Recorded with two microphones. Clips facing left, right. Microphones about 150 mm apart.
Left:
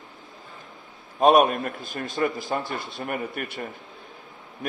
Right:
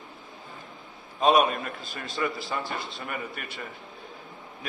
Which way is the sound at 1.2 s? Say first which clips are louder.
Left 4 dB; 50° left (ahead or behind).